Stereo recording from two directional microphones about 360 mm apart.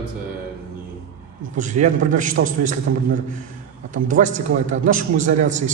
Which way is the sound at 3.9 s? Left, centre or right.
Right.